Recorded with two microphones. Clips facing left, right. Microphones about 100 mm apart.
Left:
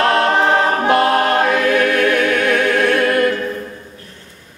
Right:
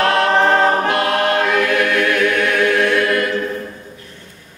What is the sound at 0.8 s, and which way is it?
Choir, 35° left (ahead or behind).